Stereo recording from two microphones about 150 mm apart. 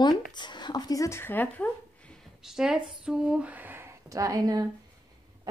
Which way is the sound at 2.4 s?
5° right (ahead or behind).